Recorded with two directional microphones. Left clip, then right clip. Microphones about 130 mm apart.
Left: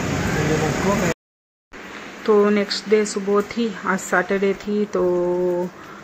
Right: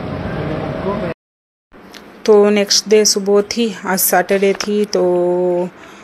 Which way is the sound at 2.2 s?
25° right (ahead or behind).